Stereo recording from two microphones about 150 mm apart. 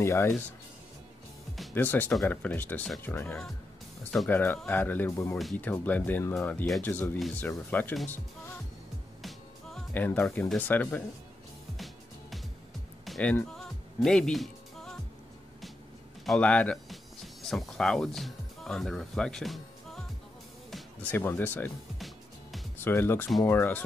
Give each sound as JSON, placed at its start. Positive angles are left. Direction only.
{"t": 0.0, "sound": "speech", "side_deg": 20}
{"t": 1.7, "sound": "speech", "side_deg": 10}
{"t": 9.2, "sound": "music", "side_deg": 5}
{"t": 13.0, "sound": "music", "side_deg": 5}
{"t": 16.3, "sound": "speech", "side_deg": 10}
{"t": 21.9, "sound": "music", "side_deg": 0}
{"t": 22.8, "sound": "speech", "side_deg": 15}